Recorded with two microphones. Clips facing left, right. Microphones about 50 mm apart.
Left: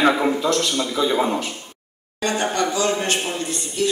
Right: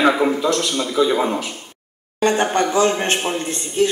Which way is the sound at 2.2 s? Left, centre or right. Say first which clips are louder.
Right 4 dB; right.